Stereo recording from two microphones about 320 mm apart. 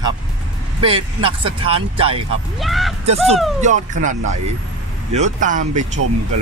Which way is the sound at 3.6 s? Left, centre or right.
Right.